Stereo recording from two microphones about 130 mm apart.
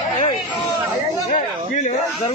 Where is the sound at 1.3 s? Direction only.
70° left (ahead or behind).